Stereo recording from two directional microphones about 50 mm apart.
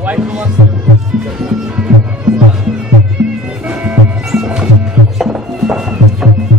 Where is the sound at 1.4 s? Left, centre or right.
Centre.